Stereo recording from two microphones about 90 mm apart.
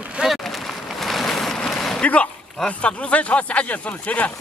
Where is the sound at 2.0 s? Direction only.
15° left (ahead or behind).